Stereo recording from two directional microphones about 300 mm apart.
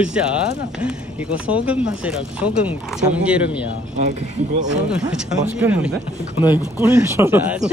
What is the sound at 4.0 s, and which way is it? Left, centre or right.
Speech, right.